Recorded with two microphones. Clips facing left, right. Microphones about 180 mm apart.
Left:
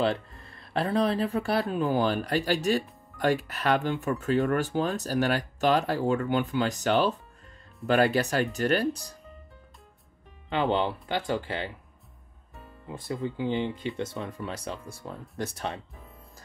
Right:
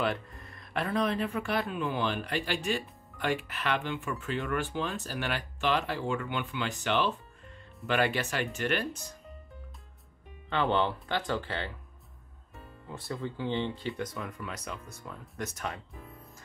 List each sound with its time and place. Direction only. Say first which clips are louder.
0.0 s speech: left 4 dB; 30° left (ahead or behind)
10.5 s speech: left 2 dB; 15° left (ahead or behind)
12.8 s speech: left 4 dB; 15° left (ahead or behind)